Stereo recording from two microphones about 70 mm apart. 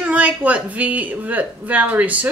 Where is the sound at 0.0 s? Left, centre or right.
Centre.